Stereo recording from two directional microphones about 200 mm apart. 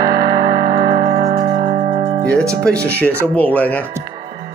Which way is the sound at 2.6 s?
5° left (ahead or behind).